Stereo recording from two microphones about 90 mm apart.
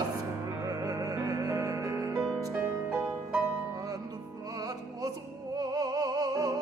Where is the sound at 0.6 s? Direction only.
40° right (ahead or behind).